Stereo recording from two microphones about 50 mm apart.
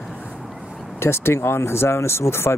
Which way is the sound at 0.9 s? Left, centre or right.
Left.